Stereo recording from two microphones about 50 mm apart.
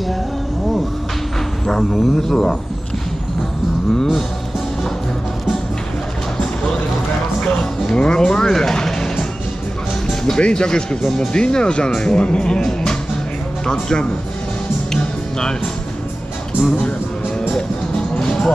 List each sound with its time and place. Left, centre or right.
1.9 s speech: centre
7.3 s music: centre
10.2 s speech: centre
14.9 s music: centre
18.1 s music: centre